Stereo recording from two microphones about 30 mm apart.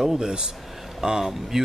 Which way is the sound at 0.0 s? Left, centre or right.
Centre.